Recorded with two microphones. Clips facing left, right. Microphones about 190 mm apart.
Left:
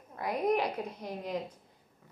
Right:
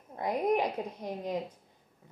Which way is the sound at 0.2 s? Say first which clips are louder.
Right 1 dB; 15° right (ahead or behind).